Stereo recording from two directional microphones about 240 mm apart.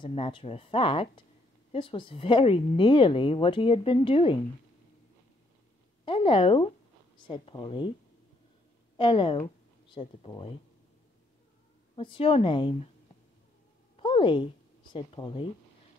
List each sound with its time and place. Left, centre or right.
0.0 s a woman's voice: left
6.0 s a woman's voice: left
8.9 s a woman's voice: left
11.9 s a woman's voice: left
13.9 s a sound: left